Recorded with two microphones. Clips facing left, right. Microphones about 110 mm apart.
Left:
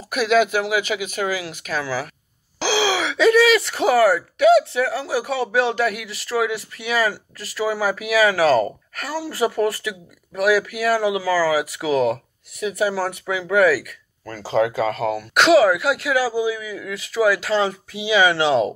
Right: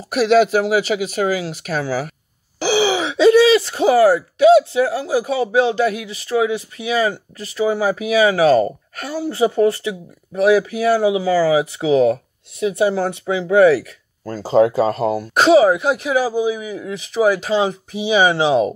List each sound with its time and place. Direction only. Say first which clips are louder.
0.1 s speech: right 4 dB; 35° right (ahead or behind)